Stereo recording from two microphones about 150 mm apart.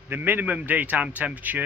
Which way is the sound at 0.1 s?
15° right (ahead or behind).